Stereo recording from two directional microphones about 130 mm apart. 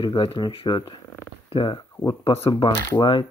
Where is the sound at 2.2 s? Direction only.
45° left (ahead or behind).